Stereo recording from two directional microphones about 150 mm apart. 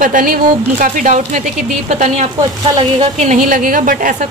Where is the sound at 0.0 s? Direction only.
65° right (ahead or behind).